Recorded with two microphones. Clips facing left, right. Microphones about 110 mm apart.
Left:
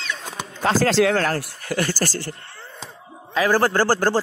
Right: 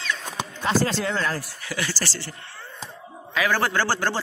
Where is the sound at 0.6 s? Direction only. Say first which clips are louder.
Left 6 dB; 90° left.